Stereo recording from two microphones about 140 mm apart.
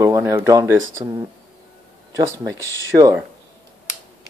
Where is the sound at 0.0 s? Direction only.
20° right (ahead or behind).